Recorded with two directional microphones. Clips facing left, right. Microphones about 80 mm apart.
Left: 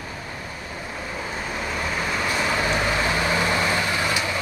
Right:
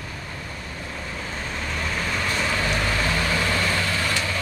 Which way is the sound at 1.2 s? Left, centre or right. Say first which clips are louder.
Left 3 dB; centre.